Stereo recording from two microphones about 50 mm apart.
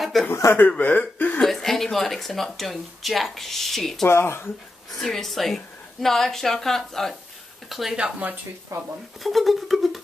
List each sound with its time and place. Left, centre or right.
0.2 s a woman's voice: centre
0.7 s speech: left
1.4 s speech: centre
4.1 s speech: left
4.9 s a woman's voice: centre
7.7 s speech: centre
8.0 s speech: right
9.2 s speech: centre